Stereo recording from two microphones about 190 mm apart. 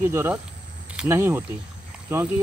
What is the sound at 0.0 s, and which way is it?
Speech, 10° right (ahead or behind).